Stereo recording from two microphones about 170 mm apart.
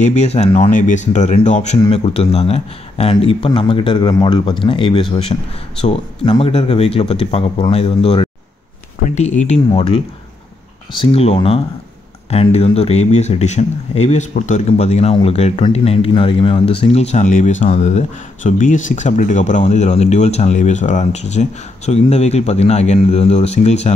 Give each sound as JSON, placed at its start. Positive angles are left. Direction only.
{"t": 0.0, "sound": "speech", "side_deg": 40}